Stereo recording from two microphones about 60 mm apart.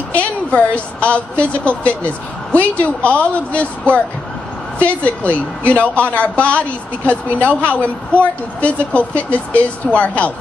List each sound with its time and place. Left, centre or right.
0.1 s speech: left